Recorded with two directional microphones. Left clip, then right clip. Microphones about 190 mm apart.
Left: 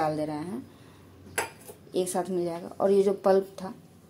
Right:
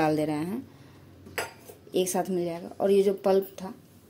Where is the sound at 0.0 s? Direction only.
30° right (ahead or behind).